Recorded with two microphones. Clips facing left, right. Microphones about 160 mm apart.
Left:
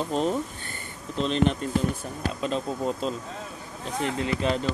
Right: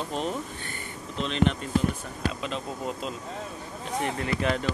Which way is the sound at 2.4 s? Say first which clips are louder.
Left 5 dB; 35° left (ahead or behind).